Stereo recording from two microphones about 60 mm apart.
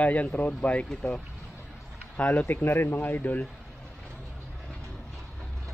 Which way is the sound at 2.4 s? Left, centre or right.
Left.